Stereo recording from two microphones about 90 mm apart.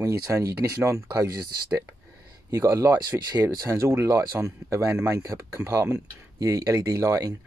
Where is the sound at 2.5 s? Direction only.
35° right (ahead or behind).